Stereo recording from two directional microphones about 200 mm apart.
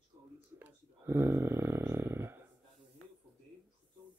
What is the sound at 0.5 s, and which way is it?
Snoring, 10° right (ahead or behind).